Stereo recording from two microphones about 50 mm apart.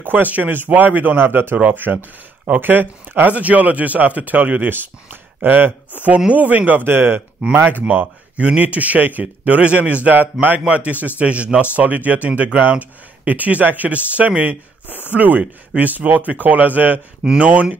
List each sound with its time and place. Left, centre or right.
0.0 s speech: right
6.0 s speech: right
6.9 s a man's voice: right
17.2 s speech: centre
17.5 s a man's voice: right